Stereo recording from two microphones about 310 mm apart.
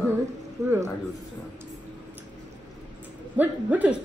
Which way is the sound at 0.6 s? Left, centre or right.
Centre.